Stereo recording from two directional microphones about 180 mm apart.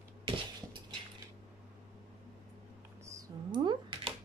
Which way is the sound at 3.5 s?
25° right (ahead or behind).